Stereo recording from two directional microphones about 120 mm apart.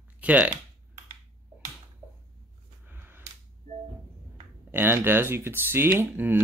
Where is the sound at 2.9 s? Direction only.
20° right (ahead or behind).